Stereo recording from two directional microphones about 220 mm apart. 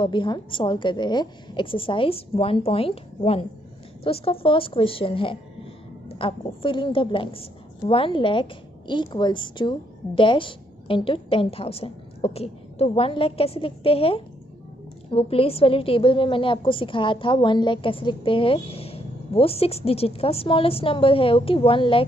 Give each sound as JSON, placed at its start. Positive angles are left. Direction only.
{"t": 0.0, "sound": "a woman's voice", "side_deg": 20}